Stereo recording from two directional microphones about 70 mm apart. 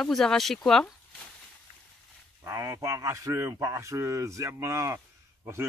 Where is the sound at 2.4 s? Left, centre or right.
Right.